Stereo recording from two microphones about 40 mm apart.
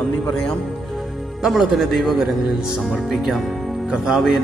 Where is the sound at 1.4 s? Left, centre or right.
Centre.